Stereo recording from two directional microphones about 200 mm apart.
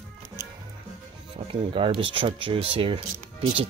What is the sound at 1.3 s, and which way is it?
Speech, 25° right (ahead or behind).